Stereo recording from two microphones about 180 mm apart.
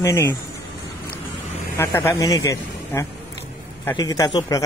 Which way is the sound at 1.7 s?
15° left (ahead or behind).